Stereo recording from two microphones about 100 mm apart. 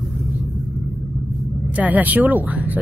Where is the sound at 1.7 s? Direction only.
15° right (ahead or behind).